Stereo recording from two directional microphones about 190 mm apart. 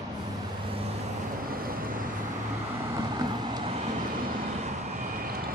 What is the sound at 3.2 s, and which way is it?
Vehicle, 25° right (ahead or behind).